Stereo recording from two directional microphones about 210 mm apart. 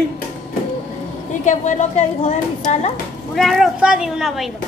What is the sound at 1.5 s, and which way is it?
Speech, 35° left (ahead or behind).